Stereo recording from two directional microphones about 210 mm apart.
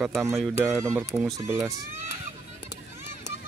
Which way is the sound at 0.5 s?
15° right (ahead or behind).